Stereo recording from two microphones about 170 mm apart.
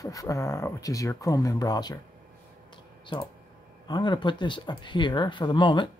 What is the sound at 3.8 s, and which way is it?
Speech, 25° left (ahead or behind).